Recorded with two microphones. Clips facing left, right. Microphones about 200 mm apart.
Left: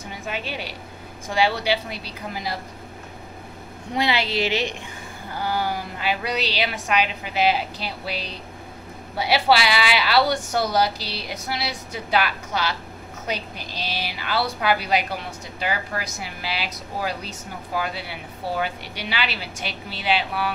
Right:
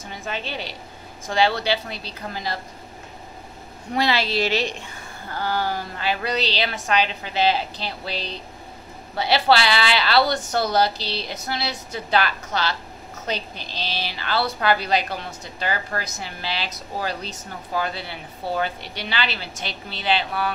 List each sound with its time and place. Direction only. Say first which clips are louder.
0.1 s a woman's voice: right 1 dB; 10° left (ahead or behind)
3.9 s a woman's voice: right 1 dB; 15° left (ahead or behind)